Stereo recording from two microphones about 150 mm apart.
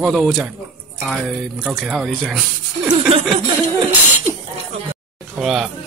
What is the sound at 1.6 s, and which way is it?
Speech, centre (ahead or behind).